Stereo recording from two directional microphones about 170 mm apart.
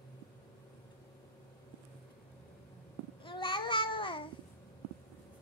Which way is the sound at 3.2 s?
30° left (ahead or behind).